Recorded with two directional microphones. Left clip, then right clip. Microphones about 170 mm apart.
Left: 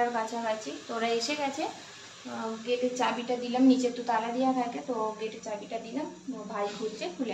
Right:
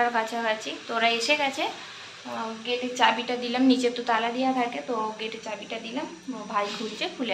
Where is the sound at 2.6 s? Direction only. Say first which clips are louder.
Right 5 dB; 5° right (ahead or behind).